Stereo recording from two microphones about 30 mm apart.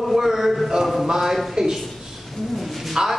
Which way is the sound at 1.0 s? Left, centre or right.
Right.